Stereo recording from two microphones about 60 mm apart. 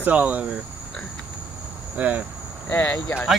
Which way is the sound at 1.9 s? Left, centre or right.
Right.